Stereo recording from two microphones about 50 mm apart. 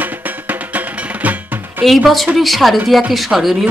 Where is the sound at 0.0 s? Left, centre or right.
Right.